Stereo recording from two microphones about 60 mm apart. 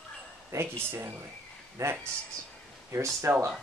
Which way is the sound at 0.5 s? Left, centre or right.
Right.